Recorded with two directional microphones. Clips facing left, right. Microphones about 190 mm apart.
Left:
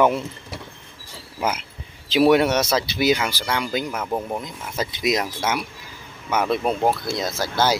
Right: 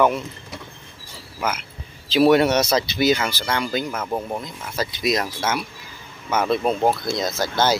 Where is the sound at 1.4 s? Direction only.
30° left (ahead or behind).